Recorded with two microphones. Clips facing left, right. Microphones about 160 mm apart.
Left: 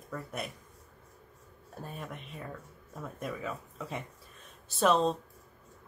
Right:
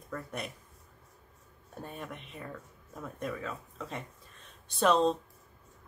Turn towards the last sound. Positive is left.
turn(degrees=0)  # may be behind; listen again after turning